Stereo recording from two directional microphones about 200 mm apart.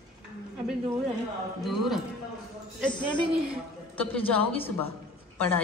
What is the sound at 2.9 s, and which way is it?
Speech, 25° left (ahead or behind).